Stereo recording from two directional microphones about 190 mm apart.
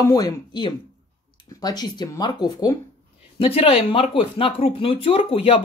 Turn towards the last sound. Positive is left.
turn(degrees=30)  # may be behind; listen again after turning